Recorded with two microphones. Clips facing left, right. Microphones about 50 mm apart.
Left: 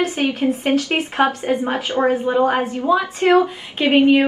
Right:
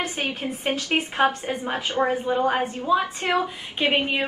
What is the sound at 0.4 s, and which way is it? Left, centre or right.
A woman's voice, left.